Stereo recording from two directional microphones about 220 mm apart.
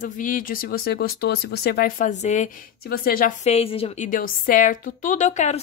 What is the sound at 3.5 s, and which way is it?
A woman's voice, 25° left (ahead or behind).